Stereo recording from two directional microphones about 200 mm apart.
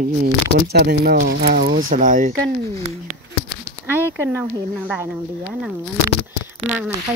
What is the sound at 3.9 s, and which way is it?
Speech, 10° right (ahead or behind).